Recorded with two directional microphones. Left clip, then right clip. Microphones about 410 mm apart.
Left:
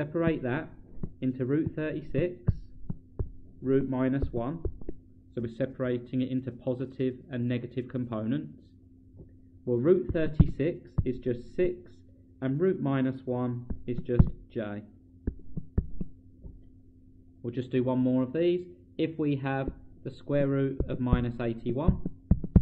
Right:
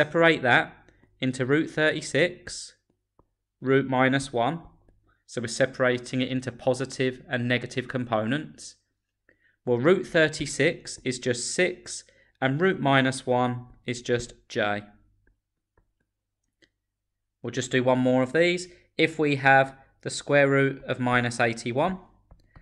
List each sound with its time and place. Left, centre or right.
0.0 s speech: centre
3.6 s speech: centre
9.7 s speech: centre
17.4 s speech: centre